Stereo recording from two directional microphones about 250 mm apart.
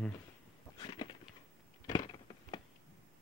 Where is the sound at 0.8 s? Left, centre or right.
Centre.